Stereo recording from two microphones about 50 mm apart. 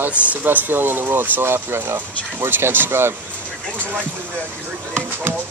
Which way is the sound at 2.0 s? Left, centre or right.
Right.